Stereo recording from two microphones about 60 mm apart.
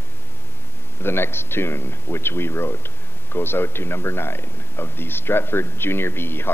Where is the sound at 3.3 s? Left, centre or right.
Left.